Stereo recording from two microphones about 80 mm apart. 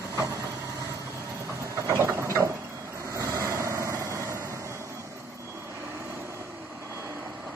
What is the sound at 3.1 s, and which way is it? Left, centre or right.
Vehicle, right.